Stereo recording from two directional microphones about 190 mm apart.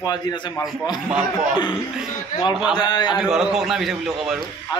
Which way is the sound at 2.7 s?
20° left (ahead or behind).